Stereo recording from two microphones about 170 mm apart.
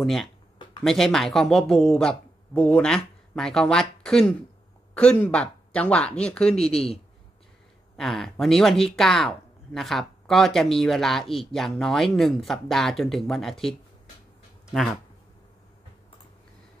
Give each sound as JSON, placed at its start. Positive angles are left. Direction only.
{"t": 0.0, "sound": "speech", "side_deg": 0}
{"t": 6.7, "sound": "a man's voice", "side_deg": 35}
{"t": 8.0, "sound": "speech", "side_deg": 0}